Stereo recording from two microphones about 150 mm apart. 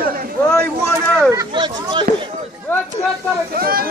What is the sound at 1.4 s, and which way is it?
Speech, 30° right (ahead or behind).